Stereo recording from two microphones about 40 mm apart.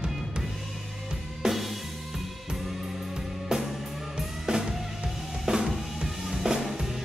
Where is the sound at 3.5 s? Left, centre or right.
Centre.